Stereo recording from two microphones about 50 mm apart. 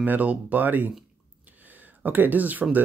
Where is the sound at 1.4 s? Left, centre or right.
Right.